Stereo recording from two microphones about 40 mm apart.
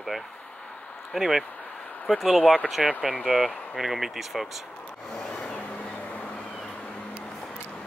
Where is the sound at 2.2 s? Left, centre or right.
Centre.